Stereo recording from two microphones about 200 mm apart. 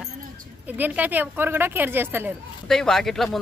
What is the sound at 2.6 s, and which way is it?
Speech, centre (ahead or behind).